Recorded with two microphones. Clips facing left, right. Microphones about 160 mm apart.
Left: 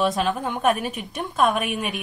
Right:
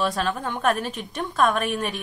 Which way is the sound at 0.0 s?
10° left (ahead or behind).